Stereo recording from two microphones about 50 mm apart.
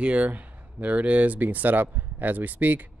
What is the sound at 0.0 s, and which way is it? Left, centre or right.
Speech, right.